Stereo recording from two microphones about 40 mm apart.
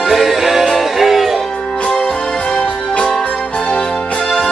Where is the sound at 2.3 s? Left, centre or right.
Left.